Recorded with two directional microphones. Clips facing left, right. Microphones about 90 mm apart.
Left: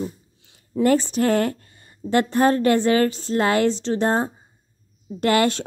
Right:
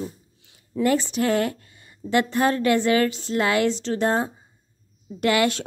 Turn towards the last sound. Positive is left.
turn(degrees=35)  # may be behind; listen again after turning